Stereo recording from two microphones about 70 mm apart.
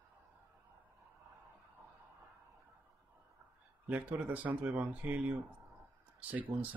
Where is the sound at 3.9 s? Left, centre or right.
Right.